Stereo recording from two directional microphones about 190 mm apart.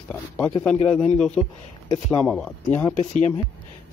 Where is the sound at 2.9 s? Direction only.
40° left (ahead or behind).